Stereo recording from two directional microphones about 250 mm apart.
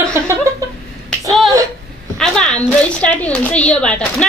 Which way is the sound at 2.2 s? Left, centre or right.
Centre.